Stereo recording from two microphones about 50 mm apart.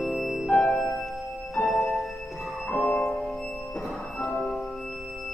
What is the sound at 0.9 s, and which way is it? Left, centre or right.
Music, centre.